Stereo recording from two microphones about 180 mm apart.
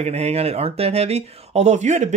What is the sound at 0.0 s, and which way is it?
Speech, 35° right (ahead or behind).